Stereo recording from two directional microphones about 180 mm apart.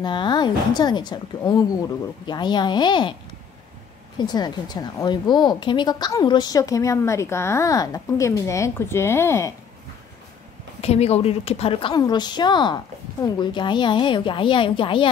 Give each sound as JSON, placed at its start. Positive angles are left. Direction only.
{"t": 0.0, "sound": "a woman's voice", "side_deg": 25}
{"t": 4.2, "sound": "a woman's voice", "side_deg": 25}
{"t": 10.8, "sound": "a woman's voice", "side_deg": 35}